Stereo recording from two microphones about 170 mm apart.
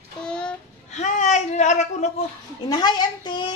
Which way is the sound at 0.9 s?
45° left (ahead or behind).